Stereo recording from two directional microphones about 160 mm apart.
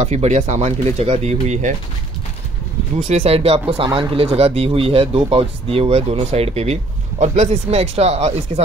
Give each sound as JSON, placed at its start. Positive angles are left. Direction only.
{"t": 0.0, "sound": "speech", "side_deg": -45}
{"t": 3.0, "sound": "speech", "side_deg": -45}